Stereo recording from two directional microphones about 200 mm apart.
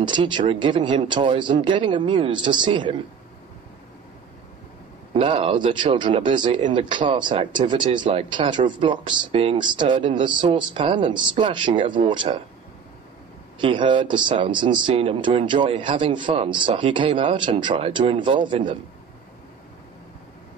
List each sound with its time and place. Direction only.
0.0 s speech: 25° right (ahead or behind)
5.1 s speech: 25° right (ahead or behind)
13.6 s speech: 25° right (ahead or behind)